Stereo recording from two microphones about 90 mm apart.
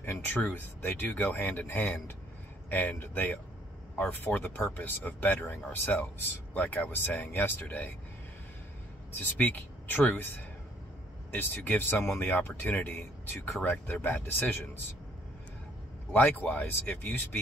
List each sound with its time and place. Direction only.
0.0 s speech: 25° left (ahead or behind)
9.2 s speech: 20° left (ahead or behind)
11.3 s speech: 20° left (ahead or behind)
16.1 s speech: 25° left (ahead or behind)